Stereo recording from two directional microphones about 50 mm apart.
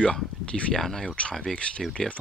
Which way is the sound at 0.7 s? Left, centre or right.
Centre.